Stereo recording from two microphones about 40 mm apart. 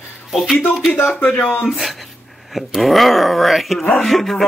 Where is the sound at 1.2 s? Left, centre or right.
Left.